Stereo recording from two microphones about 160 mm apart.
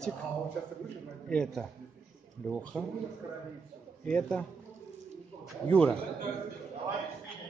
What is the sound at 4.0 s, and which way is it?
Speech, 5° left (ahead or behind).